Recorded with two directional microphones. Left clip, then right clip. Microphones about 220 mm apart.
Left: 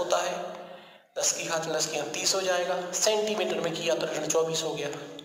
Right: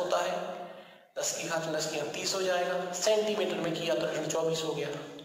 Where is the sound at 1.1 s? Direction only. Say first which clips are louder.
Left 4 dB; 45° left (ahead or behind).